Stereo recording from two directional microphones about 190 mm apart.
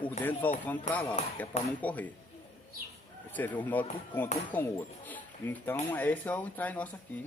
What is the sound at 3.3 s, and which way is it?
Speech, 10° left (ahead or behind).